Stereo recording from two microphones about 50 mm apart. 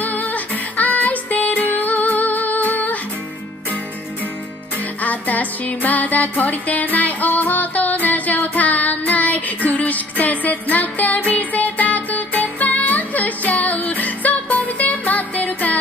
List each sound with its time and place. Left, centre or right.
0.0 s music: left
5.0 s music: left